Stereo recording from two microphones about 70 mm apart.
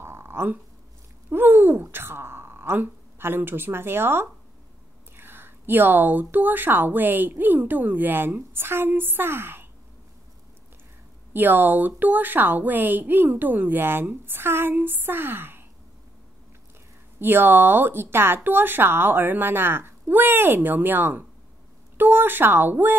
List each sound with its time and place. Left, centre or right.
0.0 s a sound: right
1.3 s a woman's voice: right
11.3 s a woman's voice: right
17.2 s a woman's voice: right